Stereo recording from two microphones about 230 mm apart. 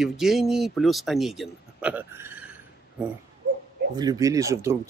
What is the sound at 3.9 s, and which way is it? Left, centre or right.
Speech, centre.